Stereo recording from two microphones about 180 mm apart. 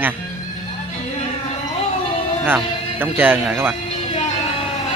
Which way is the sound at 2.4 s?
10° right (ahead or behind).